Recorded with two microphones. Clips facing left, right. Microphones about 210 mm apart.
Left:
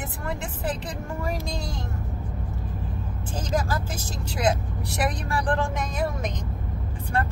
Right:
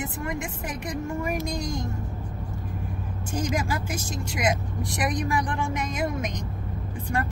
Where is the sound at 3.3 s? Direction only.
10° right (ahead or behind).